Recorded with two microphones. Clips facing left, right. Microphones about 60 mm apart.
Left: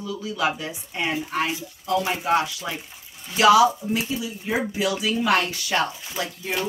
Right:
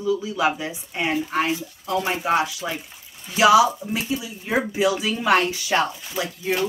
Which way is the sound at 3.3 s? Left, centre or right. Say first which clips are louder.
Even; centre.